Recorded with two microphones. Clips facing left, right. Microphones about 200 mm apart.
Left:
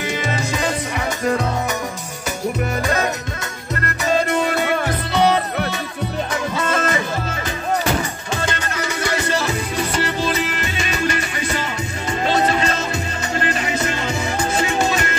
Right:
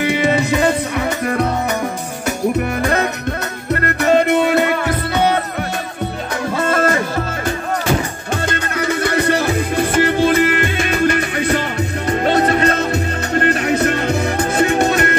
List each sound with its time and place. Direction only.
0.0 s music: 60° right (ahead or behind)
2.8 s music: 60° right (ahead or behind)
6.5 s music: 55° right (ahead or behind)
8.5 s music: 55° right (ahead or behind)